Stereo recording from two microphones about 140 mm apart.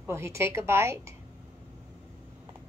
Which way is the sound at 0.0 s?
20° right (ahead or behind).